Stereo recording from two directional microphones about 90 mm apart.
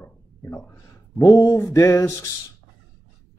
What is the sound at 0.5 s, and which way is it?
Speech, 30° left (ahead or behind).